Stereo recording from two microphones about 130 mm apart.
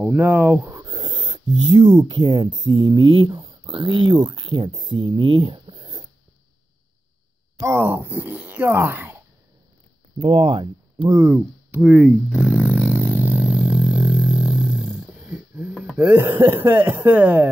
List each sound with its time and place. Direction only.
0.1 s speech: 15° right (ahead or behind)
0.7 s speech: 30° right (ahead or behind)
7.5 s speech: 20° right (ahead or behind)
10.1 s speech: 45° right (ahead or behind)
11.3 s speech: 10° right (ahead or behind)
12.9 s vehicle: 15° right (ahead or behind)
16.1 s speech: 15° right (ahead or behind)